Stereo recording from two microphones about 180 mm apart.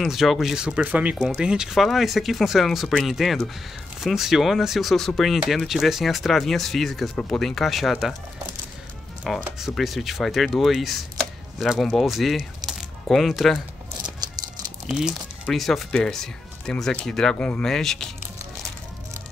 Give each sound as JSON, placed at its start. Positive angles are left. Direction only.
{"t": 0.0, "sound": "speech", "side_deg": 0}
{"t": 9.4, "sound": "speech", "side_deg": 0}
{"t": 14.0, "sound": "a sound", "side_deg": -20}
{"t": 14.9, "sound": "speech", "side_deg": -5}